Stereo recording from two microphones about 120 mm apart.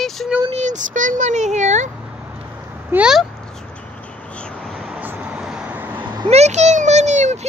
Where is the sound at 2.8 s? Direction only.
10° right (ahead or behind).